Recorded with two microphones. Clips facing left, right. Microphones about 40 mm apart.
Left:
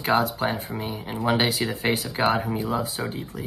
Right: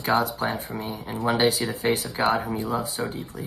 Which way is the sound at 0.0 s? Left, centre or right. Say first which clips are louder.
Left 1 dB; left.